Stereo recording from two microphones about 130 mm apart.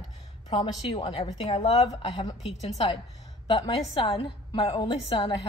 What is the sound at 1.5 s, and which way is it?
Speech, 55° left (ahead or behind).